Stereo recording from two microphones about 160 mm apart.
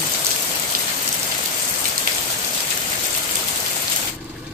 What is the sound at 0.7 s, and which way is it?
Rain on surface, 65° right (ahead or behind).